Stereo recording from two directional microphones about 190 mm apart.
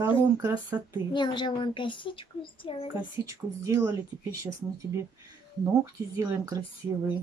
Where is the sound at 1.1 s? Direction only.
25° left (ahead or behind).